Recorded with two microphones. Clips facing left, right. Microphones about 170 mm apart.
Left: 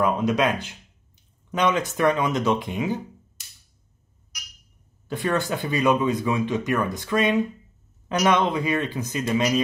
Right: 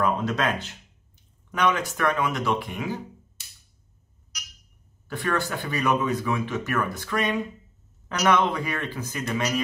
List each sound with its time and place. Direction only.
0.0 s speech: 15° left (ahead or behind)
5.0 s speech: 20° left (ahead or behind)